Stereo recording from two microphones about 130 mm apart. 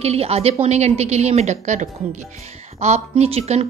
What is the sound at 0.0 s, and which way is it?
A woman's voice, 50° right (ahead or behind).